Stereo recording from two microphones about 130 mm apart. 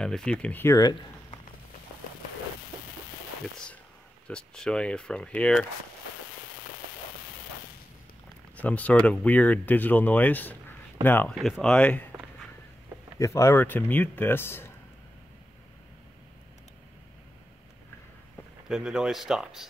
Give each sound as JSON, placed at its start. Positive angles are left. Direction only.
{"t": 0.0, "sound": "speech", "side_deg": 5}
{"t": 3.5, "sound": "speech", "side_deg": 5}
{"t": 8.5, "sound": "speech", "side_deg": 10}
{"t": 11.3, "sound": "speech", "side_deg": 0}
{"t": 13.2, "sound": "speech", "side_deg": 25}
{"t": 18.7, "sound": "speech", "side_deg": -5}